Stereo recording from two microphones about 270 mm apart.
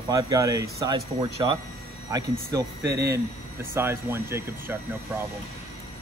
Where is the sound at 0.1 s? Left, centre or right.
Centre.